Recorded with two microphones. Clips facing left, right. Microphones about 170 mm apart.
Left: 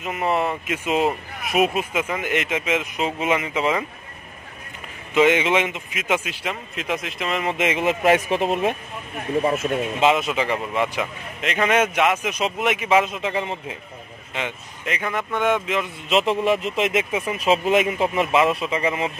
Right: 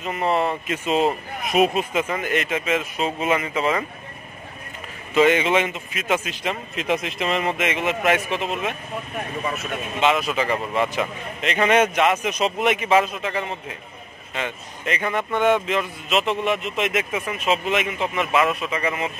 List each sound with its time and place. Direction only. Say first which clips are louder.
0.0 s a man's voice: right 1 dB; 5° left (ahead or behind)
5.1 s a man's voice: even; 15° left (ahead or behind)
6.4 s a man's voice: right 2 dB; centre (ahead or behind)
7.5 s a man's voice: left 2 dB; 30° left (ahead or behind)
8.3 s speech: left 5 dB; 45° left (ahead or behind)
9.9 s a man's voice: right 1 dB; 25° left (ahead or behind)
10.7 s a man's voice: right 1 dB; 5° left (ahead or behind)
13.0 s a man's voice: left 1 dB; 25° left (ahead or behind)
14.9 s a man's voice: right 2 dB; centre (ahead or behind)
16.1 s a man's voice: left 3 dB; 30° left (ahead or behind)